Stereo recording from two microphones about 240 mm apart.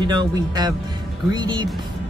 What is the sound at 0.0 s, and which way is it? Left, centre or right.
Speech, centre.